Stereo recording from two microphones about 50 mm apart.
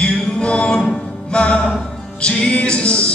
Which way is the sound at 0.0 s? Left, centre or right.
Left.